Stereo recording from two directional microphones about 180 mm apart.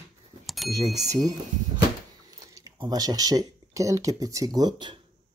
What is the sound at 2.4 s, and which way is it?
Speech, 20° right (ahead or behind).